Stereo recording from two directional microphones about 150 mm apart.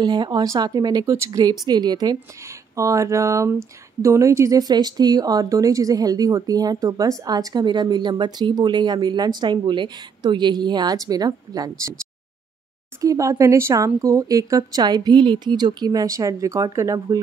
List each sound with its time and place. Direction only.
0.0 s speech: 30° right (ahead or behind)
13.0 s speech: 20° right (ahead or behind)